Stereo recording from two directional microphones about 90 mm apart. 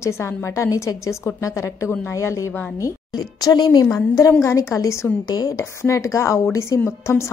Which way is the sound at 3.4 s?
50° left (ahead or behind).